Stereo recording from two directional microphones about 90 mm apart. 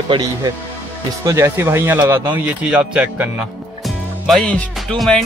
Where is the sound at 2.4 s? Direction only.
15° right (ahead or behind).